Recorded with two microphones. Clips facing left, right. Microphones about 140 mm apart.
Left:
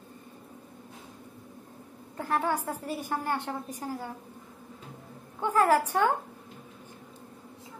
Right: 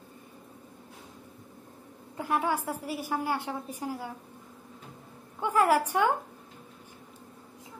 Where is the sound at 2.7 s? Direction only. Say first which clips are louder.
Even; 10° right (ahead or behind).